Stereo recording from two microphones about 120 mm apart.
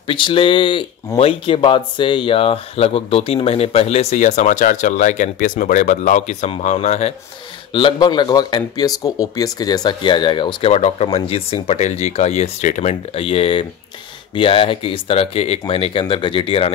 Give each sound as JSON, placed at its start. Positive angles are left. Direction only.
{"t": 0.0, "sound": "speech", "side_deg": 45}
{"t": 7.7, "sound": "speech", "side_deg": 40}
{"t": 10.7, "sound": "speech", "side_deg": 60}
{"t": 13.1, "sound": "speech", "side_deg": 50}